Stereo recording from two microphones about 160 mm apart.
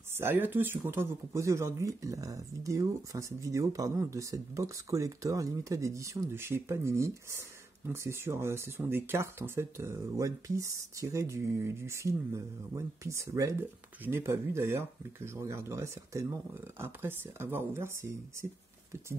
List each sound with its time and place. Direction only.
0.1 s speech: 15° right (ahead or behind)